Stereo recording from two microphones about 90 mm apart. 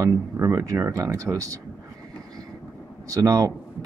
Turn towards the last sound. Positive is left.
turn(degrees=-40)  # may be behind; listen again after turning